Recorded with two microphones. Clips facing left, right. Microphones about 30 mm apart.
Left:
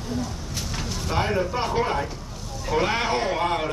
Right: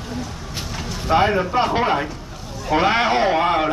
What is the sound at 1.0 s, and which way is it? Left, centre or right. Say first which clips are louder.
A man's voice: right 7 dB; right.